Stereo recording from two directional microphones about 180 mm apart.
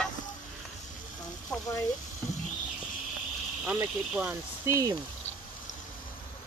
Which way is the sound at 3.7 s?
5° right (ahead or behind).